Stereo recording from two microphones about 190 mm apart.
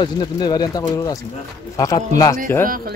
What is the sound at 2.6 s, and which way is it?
Speech, 50° right (ahead or behind).